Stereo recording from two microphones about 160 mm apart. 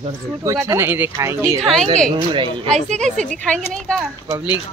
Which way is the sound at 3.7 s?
5° left (ahead or behind).